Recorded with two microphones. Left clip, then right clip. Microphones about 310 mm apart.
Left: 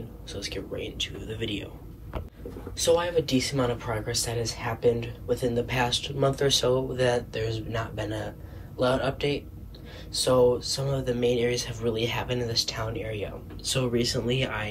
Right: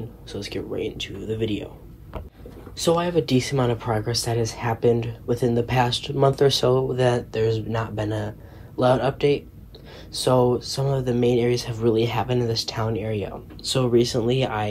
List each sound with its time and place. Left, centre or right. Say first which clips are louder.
0.3 s speech: right 4 dB; centre
2.8 s speech: right 2 dB; centre